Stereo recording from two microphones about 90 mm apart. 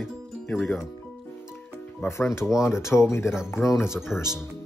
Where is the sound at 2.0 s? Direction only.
30° left (ahead or behind).